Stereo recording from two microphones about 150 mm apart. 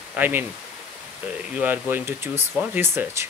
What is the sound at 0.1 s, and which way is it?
Speech, 15° right (ahead or behind).